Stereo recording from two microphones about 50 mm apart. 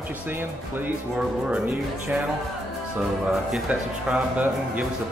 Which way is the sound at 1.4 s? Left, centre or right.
Centre.